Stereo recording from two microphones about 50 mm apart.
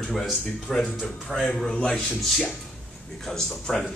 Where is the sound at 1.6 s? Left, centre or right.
Centre.